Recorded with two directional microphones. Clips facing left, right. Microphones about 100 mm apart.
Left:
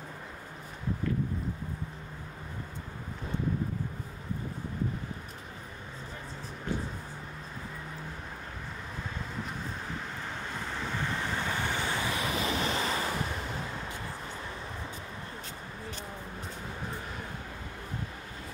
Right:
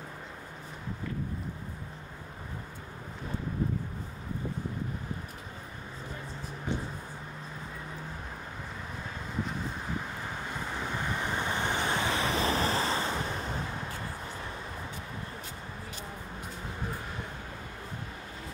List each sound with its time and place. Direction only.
11.0 s vehicle: 20° right (ahead or behind); by 13.0 s 35° right (ahead or behind)